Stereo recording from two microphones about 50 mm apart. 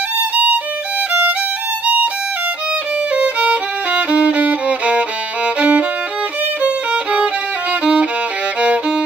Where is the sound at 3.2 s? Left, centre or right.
Right.